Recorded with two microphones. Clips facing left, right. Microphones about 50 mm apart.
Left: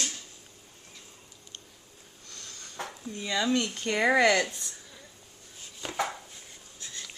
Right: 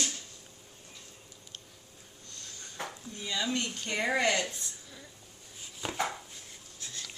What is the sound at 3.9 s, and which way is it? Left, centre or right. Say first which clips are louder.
Speech: left 6 dB; left.